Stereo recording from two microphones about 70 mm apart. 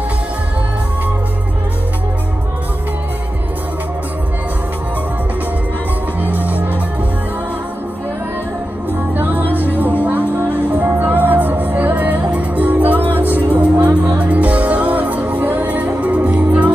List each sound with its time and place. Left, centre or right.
6.2 s music: right
9.1 s music: right